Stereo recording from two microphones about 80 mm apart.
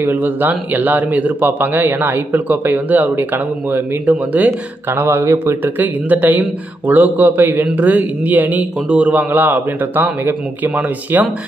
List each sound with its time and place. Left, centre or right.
0.0 s a man's voice: right
4.5 s a man's voice: right